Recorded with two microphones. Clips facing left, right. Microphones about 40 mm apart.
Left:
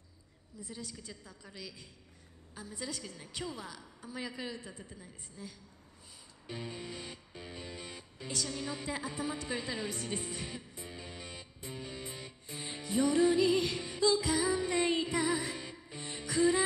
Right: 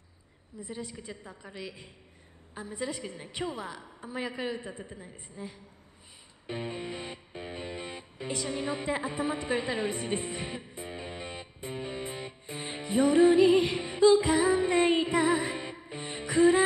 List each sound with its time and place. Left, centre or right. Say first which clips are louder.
0.6 s a woman's voice: right 6 dB; right
6.4 s music: right 6 dB; right